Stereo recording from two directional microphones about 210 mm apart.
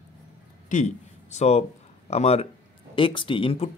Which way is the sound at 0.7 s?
35° left (ahead or behind).